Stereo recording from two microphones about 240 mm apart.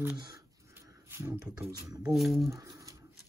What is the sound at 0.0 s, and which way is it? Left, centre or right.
Speech, centre.